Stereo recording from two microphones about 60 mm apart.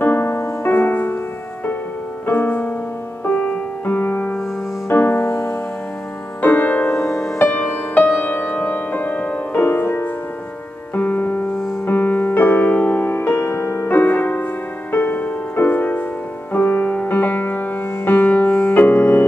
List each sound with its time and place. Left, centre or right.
0.0 s music: left
0.7 s music: left
2.2 s music: left
3.3 s music: centre
3.8 s music: left
6.4 s music: left